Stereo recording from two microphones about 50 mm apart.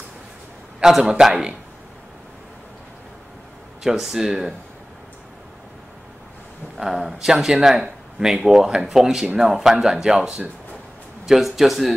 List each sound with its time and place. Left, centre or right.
0.7 s speech: centre
3.8 s speech: centre
6.8 s speech: centre
11.2 s a man's voice: centre